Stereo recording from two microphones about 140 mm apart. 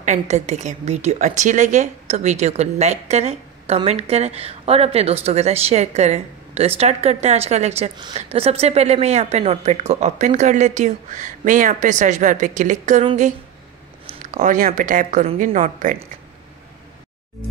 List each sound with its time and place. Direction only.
0.0 s a woman's voice: 55° right (ahead or behind)
14.0 s a sound: 65° right (ahead or behind)
14.8 s speech: 70° right (ahead or behind)